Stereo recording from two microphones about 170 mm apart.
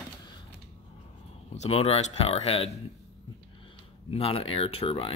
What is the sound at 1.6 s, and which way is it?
Speech, 35° left (ahead or behind).